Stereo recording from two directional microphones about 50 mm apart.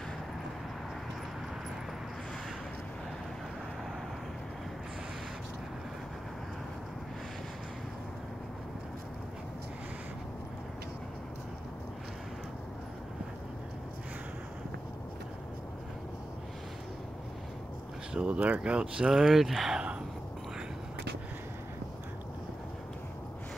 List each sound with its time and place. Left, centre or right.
18.1 s speech: right; by 19.8 s centre